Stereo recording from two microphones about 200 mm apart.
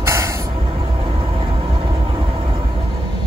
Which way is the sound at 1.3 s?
25° right (ahead or behind).